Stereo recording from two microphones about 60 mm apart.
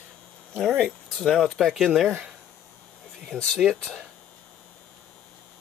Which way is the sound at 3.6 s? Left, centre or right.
Centre.